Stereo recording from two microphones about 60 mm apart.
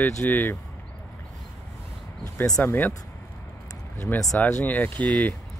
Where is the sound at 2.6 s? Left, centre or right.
Left.